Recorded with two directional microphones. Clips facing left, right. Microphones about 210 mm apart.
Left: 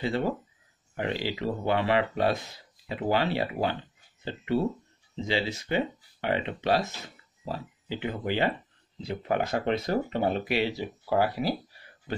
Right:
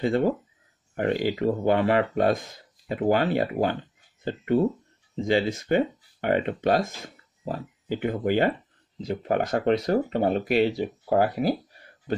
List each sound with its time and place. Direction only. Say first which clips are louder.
0.0 s speech: right 5 dB; 50° right (ahead or behind)